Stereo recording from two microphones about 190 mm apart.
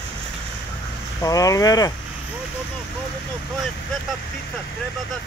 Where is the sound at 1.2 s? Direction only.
20° left (ahead or behind).